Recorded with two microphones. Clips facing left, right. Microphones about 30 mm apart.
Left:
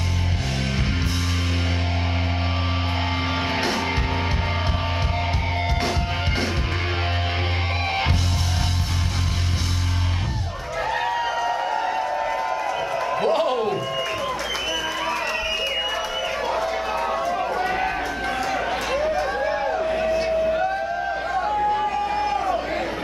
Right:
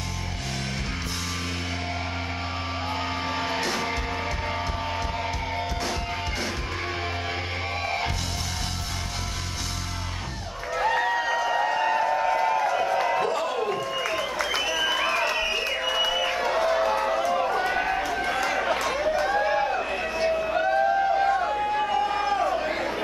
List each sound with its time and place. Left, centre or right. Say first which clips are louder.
3.3 s music: left 3 dB; left
10.8 s a sound: even; centre
12.0 s crowd: right 1 dB; centre
13.2 s a sound: left 5 dB; left
14.9 s music: right 1 dB; centre
16.3 s run: even; centre
16.7 s run: right 1 dB; centre
17.6 s run: left 1 dB; centre
19.3 s a sound: even; centre
21.3 s chatter: left 2 dB; centre
22.5 s crowd: left 2 dB; centre